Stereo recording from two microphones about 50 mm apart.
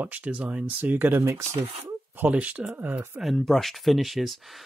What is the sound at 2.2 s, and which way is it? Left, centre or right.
Speech, right.